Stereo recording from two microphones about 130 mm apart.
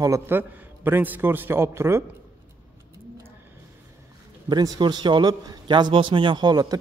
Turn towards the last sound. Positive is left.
turn(degrees=-30)  # may be behind; listen again after turning